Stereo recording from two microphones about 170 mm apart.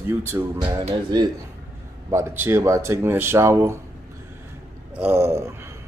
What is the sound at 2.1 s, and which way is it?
Speech, 15° right (ahead or behind).